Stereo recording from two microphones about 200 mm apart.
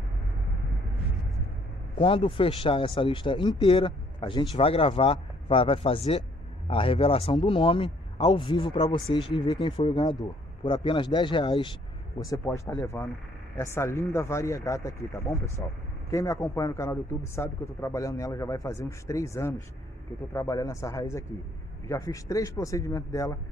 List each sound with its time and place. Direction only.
2.0 s a man's voice: 25° left (ahead or behind)